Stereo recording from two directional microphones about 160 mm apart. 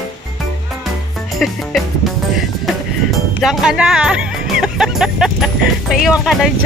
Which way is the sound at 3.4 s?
Centre (ahead or behind).